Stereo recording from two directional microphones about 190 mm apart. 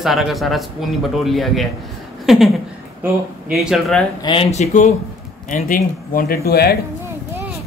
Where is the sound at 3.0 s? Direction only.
5° right (ahead or behind).